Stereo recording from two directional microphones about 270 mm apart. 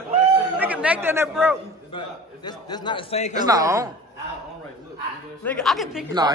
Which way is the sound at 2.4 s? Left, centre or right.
Centre.